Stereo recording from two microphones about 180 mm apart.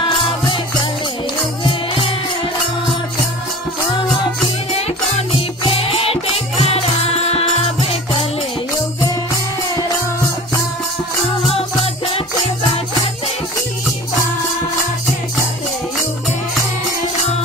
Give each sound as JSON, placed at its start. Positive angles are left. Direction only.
{"t": 1.6, "sound": "music", "side_deg": 30}
{"t": 5.8, "sound": "music", "side_deg": 35}
{"t": 7.8, "sound": "music", "side_deg": 35}
{"t": 11.4, "sound": "music", "side_deg": 35}